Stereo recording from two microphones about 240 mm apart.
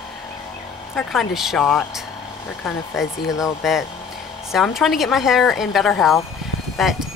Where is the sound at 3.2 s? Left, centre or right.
Centre.